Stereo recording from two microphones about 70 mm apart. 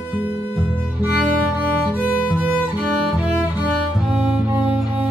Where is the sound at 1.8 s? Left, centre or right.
Centre.